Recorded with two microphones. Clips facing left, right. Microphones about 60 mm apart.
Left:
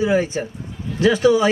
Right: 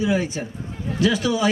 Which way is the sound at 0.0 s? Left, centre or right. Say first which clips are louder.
Left 4 dB; left.